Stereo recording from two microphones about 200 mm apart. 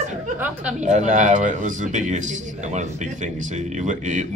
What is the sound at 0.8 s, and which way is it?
Speech, 35° right (ahead or behind).